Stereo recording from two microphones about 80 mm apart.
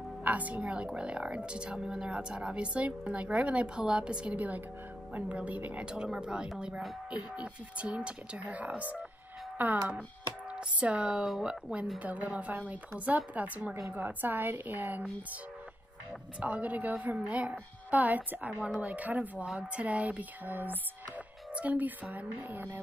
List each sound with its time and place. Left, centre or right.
0.2 s a woman's voice: centre
16.3 s a woman's voice: centre